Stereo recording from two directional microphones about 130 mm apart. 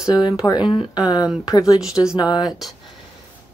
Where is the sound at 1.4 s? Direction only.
30° left (ahead or behind).